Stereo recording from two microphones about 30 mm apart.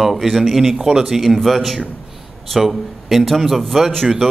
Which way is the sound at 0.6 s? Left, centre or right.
Centre.